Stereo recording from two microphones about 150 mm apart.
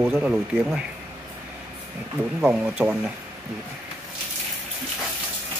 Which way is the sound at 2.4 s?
5° right (ahead or behind).